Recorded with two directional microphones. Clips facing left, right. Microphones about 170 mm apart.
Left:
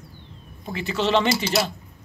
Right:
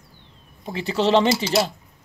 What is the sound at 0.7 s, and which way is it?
Speech, 30° right (ahead or behind).